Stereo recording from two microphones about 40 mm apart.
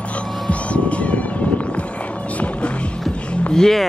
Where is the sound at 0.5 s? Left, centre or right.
Left.